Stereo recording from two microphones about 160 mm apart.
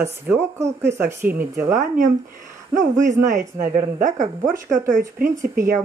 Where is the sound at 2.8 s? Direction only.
55° right (ahead or behind).